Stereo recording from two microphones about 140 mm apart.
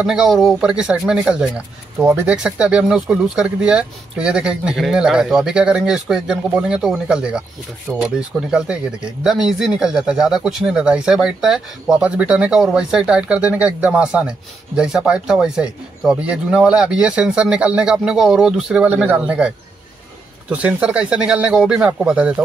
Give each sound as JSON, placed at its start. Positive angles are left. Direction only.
{"t": 0.0, "sound": "speech", "side_deg": -5}